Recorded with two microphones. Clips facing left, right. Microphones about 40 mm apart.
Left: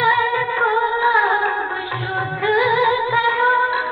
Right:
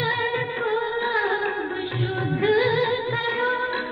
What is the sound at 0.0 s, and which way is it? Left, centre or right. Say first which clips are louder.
Music: left 7 dB; left.